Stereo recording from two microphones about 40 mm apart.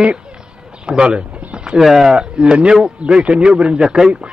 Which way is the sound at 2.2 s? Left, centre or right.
Centre.